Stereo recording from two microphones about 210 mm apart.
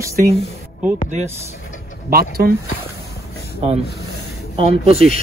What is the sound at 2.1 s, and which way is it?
Speech, 45° right (ahead or behind).